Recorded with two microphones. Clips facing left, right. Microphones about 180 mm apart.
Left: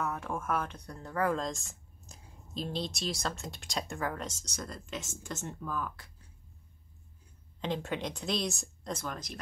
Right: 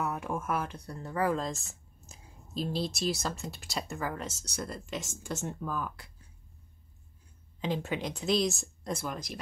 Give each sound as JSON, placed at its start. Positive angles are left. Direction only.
{"t": 0.0, "sound": "speech", "side_deg": -10}
{"t": 7.6, "sound": "speech", "side_deg": -5}